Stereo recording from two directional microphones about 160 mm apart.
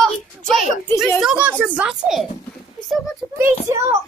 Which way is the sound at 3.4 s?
15° right (ahead or behind).